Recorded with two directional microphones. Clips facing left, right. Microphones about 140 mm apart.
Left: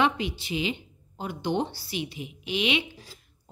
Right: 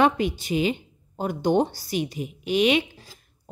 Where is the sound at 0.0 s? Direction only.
45° right (ahead or behind).